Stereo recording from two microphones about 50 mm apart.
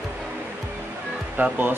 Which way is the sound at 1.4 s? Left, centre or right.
Right.